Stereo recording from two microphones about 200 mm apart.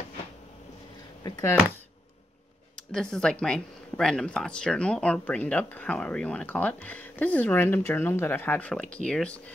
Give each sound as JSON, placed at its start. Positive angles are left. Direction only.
{"t": 1.2, "sound": "speech", "side_deg": 20}
{"t": 2.7, "sound": "speech", "side_deg": 5}